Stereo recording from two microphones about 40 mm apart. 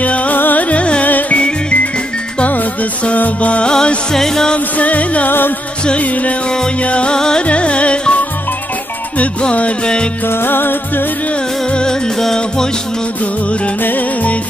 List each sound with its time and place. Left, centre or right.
0.0 s music: left
0.3 s music: left
1.0 s music: left
1.4 s music: left
4.1 s music: centre
4.6 s music: left
7.2 s music: centre
7.4 s music: left
9.4 s music: left
10.2 s music: left
11.7 s music: left
13.8 s music: left